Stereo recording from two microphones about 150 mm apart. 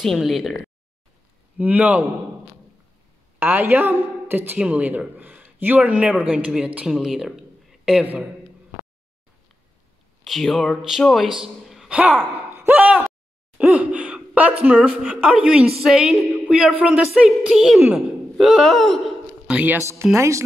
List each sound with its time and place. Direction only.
0.0 s a woman's voice: centre (ahead or behind)
1.6 s a man's voice: 10° right (ahead or behind)
3.3 s a man's voice: 15° right (ahead or behind)
10.2 s a man's voice: centre (ahead or behind)
13.6 s gasp: 10° right (ahead or behind)
14.9 s a man's voice: 10° right (ahead or behind)
19.5 s a man's voice: 10° right (ahead or behind)